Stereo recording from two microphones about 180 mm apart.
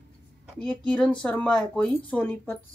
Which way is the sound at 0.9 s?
5° left (ahead or behind).